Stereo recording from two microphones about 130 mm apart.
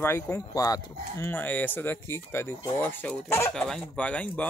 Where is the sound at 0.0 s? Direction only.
20° left (ahead or behind).